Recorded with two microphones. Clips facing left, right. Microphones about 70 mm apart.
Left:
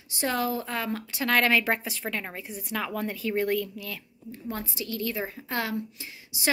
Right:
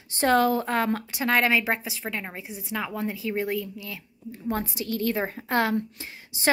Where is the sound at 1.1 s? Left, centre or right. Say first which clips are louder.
Left 2 dB; right.